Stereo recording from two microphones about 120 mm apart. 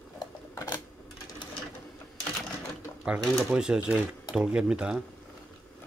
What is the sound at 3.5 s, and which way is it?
Speech, 10° right (ahead or behind).